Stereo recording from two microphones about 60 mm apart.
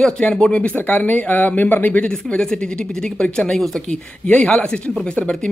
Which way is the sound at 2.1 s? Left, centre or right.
Centre.